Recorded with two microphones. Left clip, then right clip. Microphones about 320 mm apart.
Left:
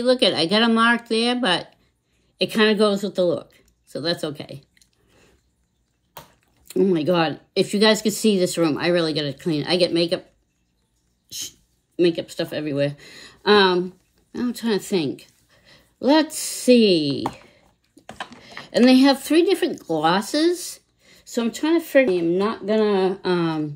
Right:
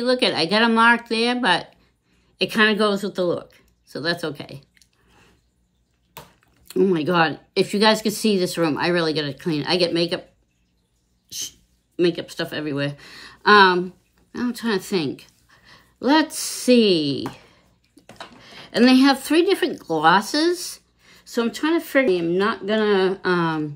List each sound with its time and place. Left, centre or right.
0.0 s speech: centre
6.7 s speech: centre
11.2 s sneeze: centre
12.0 s speech: centre